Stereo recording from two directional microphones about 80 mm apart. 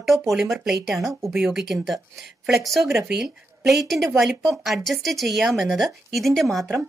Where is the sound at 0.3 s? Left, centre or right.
Centre.